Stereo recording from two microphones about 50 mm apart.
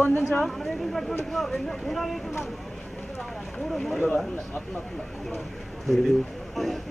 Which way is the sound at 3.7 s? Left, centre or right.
Centre.